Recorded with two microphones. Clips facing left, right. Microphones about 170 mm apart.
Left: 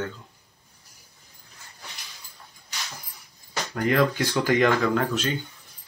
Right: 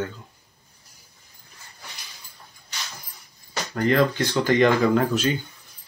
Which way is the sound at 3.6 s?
5° left (ahead or behind).